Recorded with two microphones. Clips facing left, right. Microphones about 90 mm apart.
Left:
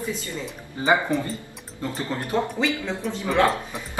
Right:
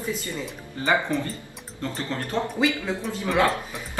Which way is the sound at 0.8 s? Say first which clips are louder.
Left 3 dB; 20° left (ahead or behind).